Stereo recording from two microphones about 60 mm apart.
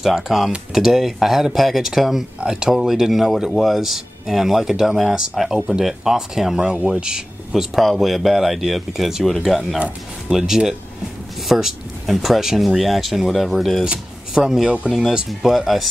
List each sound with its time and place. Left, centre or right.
0.0 s speech: centre
9.8 s speech: right
10.3 s speech: centre
13.8 s speech: centre
14.9 s speech: centre